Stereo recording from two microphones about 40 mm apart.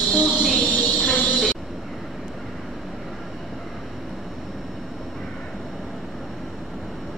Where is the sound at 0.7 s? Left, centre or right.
Left.